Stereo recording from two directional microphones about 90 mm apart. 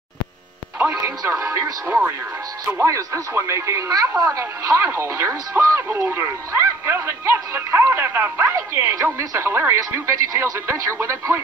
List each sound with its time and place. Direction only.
1.0 s speech: 35° right (ahead or behind)